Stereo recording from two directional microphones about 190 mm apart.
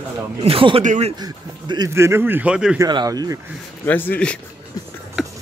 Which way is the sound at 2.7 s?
20° right (ahead or behind).